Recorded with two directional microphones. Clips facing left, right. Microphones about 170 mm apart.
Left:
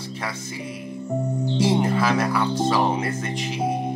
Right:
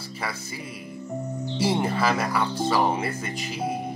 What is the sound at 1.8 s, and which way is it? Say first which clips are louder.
Speech: left 3 dB; centre (ahead or behind).